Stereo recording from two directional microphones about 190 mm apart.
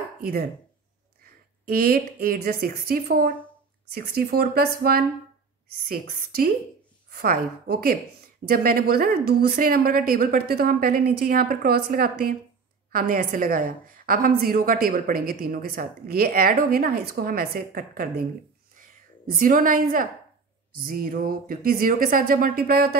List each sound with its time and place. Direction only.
0.2 s a woman's voice: 55° right (ahead or behind)
5.9 s a woman's voice: 50° right (ahead or behind)
19.3 s a woman's voice: 45° right (ahead or behind)